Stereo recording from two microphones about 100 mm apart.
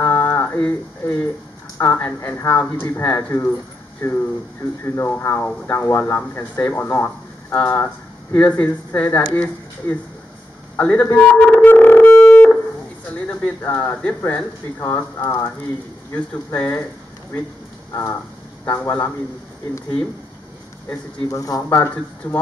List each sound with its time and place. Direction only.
0.0 s a sound: 25° left (ahead or behind)
1.8 s speech: 25° left (ahead or behind)
11.1 s music: 10° left (ahead or behind)
13.6 s speech: 20° left (ahead or behind)
16.5 s speech: 25° left (ahead or behind)
18.7 s speech: 20° left (ahead or behind)
21.3 s speech: 35° left (ahead or behind)
21.5 s speech: 20° left (ahead or behind)